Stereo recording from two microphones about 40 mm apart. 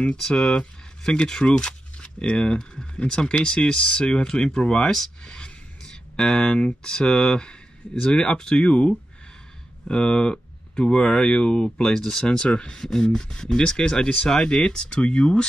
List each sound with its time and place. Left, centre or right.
0.3 s speech: left
4.3 s speech: centre
9.8 s speech: left